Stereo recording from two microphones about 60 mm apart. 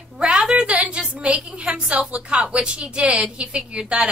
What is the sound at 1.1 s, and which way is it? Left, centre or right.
A woman's voice, centre.